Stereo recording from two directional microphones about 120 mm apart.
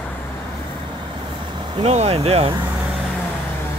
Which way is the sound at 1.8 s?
60° right (ahead or behind).